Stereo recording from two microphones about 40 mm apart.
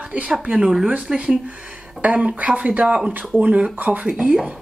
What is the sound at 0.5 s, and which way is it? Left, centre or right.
Speech, right.